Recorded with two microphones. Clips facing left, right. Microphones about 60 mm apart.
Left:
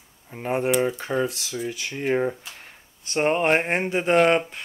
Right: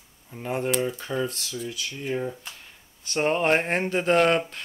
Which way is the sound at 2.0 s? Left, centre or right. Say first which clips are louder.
Left 6 dB; left.